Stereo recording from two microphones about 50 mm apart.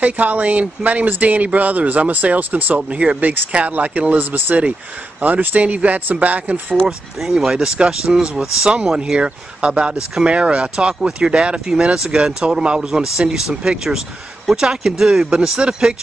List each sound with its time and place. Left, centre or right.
0.0 s speech: right
7.2 s speech: centre